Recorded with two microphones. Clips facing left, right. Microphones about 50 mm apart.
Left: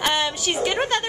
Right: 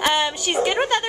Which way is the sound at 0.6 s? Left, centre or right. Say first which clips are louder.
Right 1 dB; centre.